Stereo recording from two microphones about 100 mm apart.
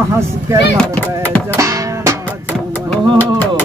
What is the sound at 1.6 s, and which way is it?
Music, 30° right (ahead or behind).